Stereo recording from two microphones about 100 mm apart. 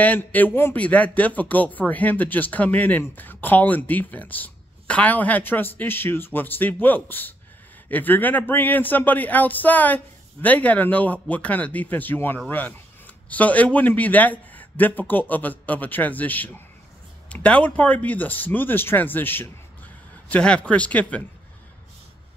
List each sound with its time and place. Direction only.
0.0 s a man's voice: 15° left (ahead or behind)